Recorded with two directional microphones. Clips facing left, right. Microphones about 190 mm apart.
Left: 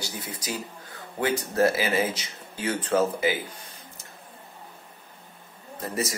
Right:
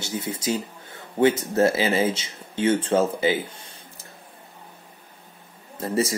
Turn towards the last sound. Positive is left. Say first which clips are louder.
# right 6 dB
turn(degrees=-30)  # may be behind; listen again after turning